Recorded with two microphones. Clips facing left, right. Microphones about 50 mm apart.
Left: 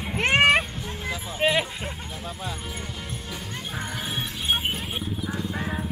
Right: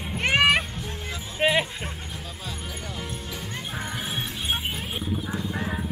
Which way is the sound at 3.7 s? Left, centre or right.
Centre.